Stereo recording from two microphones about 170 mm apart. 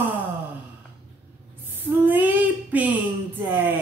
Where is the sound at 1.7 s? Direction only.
10° right (ahead or behind).